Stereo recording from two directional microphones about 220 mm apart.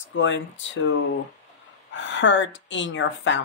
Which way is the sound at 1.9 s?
55° left (ahead or behind).